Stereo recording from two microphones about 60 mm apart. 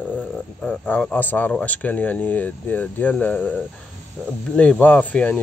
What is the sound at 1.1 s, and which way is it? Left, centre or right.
Speech, left.